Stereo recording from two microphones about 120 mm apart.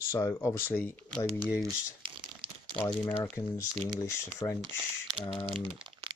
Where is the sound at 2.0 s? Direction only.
45° right (ahead or behind).